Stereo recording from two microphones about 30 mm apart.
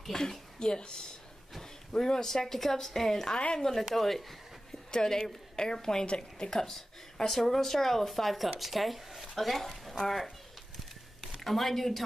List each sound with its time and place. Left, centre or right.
0.1 s a woman's voice: left
4.9 s a woman's voice: centre
6.0 s speech: left
6.5 s speech: centre
11.4 s speech: centre